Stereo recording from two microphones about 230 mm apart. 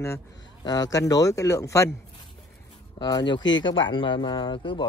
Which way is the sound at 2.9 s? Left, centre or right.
Centre.